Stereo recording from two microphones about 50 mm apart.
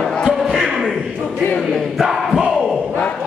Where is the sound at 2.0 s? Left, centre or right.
Centre.